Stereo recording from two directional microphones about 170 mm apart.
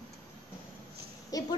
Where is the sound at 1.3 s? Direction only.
20° left (ahead or behind).